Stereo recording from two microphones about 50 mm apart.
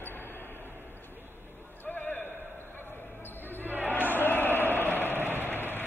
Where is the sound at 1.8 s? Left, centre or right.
Left.